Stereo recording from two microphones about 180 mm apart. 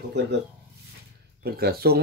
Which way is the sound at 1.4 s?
60° right (ahead or behind).